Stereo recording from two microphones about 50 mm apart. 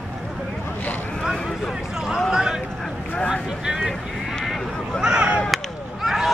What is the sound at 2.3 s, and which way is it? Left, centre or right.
Speech, centre.